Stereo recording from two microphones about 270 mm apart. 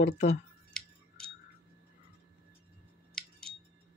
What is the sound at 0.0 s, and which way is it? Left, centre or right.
Speech, left.